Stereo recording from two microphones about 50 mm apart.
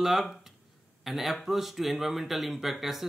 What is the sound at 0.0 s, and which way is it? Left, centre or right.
Speech, centre.